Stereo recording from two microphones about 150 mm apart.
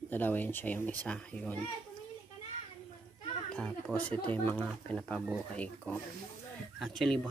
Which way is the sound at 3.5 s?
5° left (ahead or behind).